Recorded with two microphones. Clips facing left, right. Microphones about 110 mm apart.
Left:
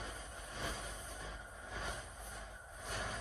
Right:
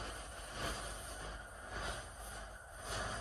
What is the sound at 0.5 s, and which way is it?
Vehicle, 5° right (ahead or behind).